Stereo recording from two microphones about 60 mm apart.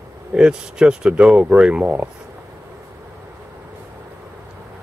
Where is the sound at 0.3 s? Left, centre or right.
Centre.